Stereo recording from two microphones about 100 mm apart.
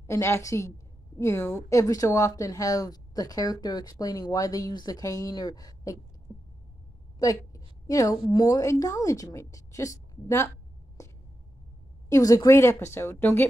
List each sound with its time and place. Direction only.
0.0 s a woman's voice: 30° left (ahead or behind)
1.8 s speech: 35° left (ahead or behind)
7.2 s a woman's voice: 35° left (ahead or behind)
12.1 s a woman's voice: 35° left (ahead or behind)